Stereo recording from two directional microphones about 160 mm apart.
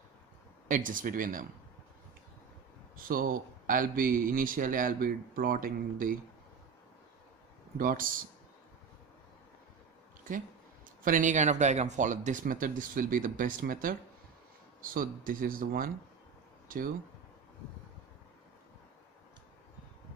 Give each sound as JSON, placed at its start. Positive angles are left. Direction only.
{"t": 0.7, "sound": "speech", "side_deg": -55}
{"t": 3.0, "sound": "speech", "side_deg": -60}
{"t": 7.7, "sound": "speech", "side_deg": -60}
{"t": 11.1, "sound": "speech", "side_deg": -50}